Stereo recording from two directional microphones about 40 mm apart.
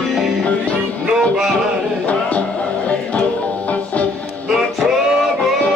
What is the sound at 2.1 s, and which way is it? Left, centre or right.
Music, left.